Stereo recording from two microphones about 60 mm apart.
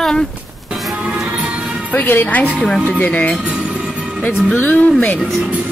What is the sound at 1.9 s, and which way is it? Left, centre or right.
Speech, left.